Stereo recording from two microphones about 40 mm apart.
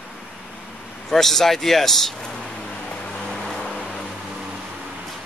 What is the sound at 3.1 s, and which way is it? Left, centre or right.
Vehicle, centre.